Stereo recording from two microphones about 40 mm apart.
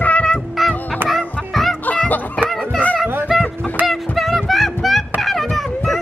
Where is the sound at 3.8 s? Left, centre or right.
Centre.